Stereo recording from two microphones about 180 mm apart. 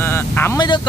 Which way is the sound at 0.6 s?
25° left (ahead or behind).